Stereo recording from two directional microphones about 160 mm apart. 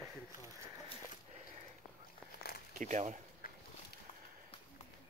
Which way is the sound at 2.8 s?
50° right (ahead or behind).